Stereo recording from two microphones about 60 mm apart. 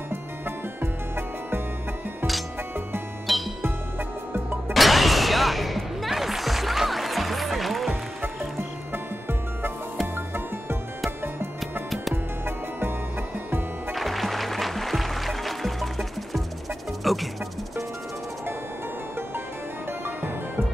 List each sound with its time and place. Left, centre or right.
3.3 s music: centre
4.3 s music: right
4.7 s music: centre
8.9 s music: right
13.9 s music: centre